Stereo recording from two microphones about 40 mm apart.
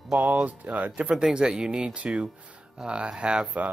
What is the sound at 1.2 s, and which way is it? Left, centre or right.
Speech, centre.